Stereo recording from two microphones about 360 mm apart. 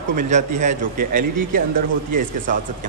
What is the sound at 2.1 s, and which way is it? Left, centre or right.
Speech, right.